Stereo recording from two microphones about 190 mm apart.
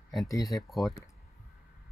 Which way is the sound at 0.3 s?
20° left (ahead or behind).